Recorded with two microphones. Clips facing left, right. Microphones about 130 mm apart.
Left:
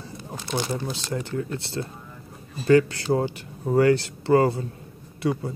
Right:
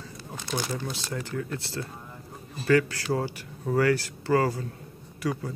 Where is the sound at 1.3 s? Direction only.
25° left (ahead or behind).